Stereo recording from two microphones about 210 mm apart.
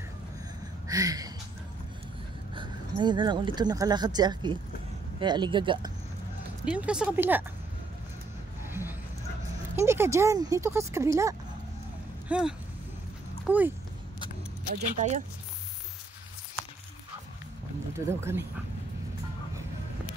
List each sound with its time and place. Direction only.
0.8 s speech: 15° right (ahead or behind)
2.5 s speech: 20° right (ahead or behind)
6.6 s speech: 5° right (ahead or behind)
9.8 s speech: 10° right (ahead or behind)
12.3 s speech: 5° right (ahead or behind)
15.0 s speech: 30° right (ahead or behind)
17.9 s speech: 10° right (ahead or behind)